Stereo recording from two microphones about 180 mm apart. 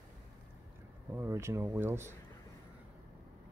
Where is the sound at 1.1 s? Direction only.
15° right (ahead or behind).